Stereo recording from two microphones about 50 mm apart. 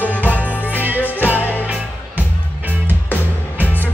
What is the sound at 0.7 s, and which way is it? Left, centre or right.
Music, right.